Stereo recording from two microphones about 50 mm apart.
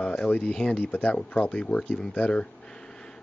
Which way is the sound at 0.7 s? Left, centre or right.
Left.